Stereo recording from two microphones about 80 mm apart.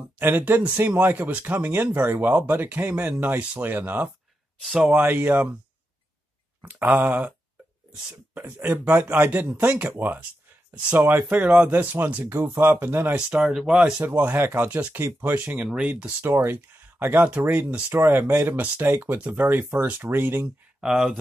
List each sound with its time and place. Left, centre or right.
0.2 s speech: right
4.6 s speech: centre
4.8 s speech: right
6.6 s speech: right
11.2 s speech: centre
13.1 s speech: centre
13.9 s speech: right
15.5 s speech: centre
16.3 s speech: right
20.8 s speech: centre